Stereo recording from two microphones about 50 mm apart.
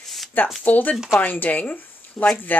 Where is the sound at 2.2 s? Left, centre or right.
Centre.